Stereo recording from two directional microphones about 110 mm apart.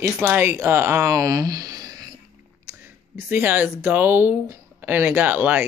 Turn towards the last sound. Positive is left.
turn(degrees=-15)  # may be behind; listen again after turning